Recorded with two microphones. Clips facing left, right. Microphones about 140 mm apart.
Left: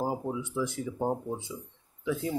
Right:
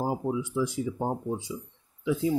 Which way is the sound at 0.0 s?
15° right (ahead or behind).